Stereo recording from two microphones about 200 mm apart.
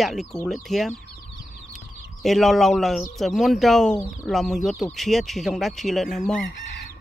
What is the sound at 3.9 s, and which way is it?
Speech, 15° left (ahead or behind).